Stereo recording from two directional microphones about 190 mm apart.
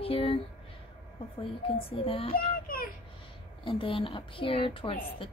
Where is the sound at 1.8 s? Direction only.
30° left (ahead or behind).